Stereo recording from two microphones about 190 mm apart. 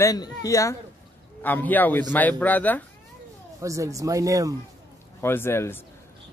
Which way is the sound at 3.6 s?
15° right (ahead or behind).